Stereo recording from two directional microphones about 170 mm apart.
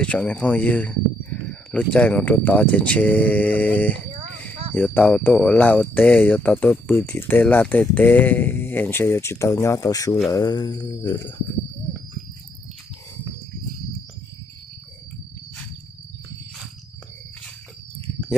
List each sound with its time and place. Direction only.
0.0 s speech: 5° left (ahead or behind); by 11.3 s 20° left (ahead or behind)